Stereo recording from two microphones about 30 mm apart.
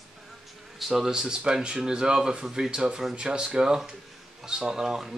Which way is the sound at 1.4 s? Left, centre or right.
Right.